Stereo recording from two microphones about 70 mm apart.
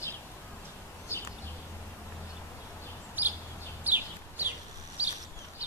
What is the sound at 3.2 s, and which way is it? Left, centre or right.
Bird, right.